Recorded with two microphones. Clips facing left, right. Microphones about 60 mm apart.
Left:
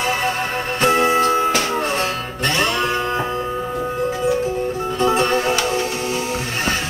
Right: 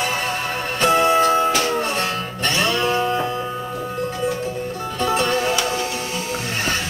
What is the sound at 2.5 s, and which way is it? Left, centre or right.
Music, left.